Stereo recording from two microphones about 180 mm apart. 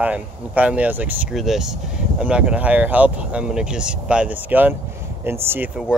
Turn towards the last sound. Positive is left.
turn(degrees=-10)  # may be behind; listen again after turning